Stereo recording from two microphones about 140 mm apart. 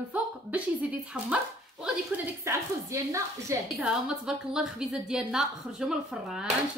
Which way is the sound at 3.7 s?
5° right (ahead or behind).